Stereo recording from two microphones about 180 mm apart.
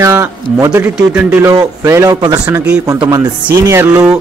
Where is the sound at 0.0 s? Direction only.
15° right (ahead or behind).